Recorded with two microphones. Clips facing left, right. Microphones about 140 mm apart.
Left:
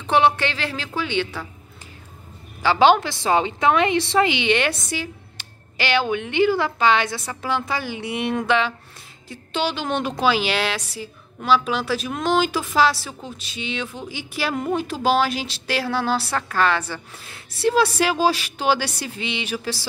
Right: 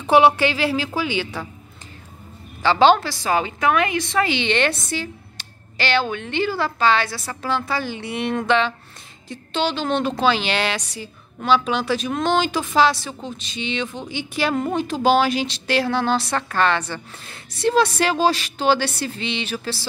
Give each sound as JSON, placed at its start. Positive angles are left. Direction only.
{"t": 0.0, "sound": "a woman's voice", "side_deg": -10}
{"t": 2.6, "sound": "a woman's voice", "side_deg": 10}
{"t": 4.3, "sound": "a woman's voice", "side_deg": 10}